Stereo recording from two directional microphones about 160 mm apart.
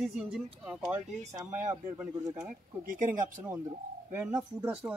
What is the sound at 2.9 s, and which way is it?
Speech, 55° right (ahead or behind).